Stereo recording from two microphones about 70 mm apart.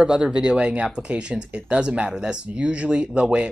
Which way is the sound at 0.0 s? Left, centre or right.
Centre.